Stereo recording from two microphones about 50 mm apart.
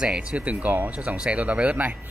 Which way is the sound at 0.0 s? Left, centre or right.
Centre.